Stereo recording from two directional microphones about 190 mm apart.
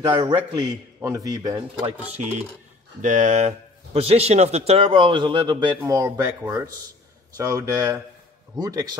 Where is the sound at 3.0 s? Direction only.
40° right (ahead or behind).